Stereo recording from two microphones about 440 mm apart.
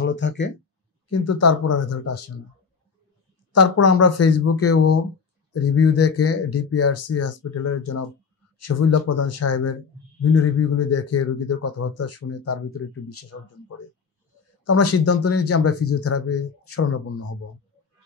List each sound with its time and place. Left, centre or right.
0.0 s speech: left
1.2 s speech: left
3.5 s speech: left